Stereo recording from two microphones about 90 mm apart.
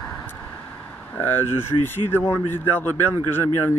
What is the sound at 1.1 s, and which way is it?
Speech, 25° left (ahead or behind).